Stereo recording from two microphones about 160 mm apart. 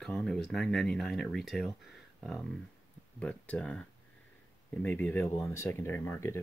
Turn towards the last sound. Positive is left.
turn(degrees=15)  # may be behind; listen again after turning